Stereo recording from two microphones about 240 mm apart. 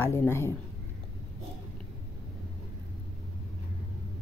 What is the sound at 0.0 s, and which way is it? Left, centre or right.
Speech, centre.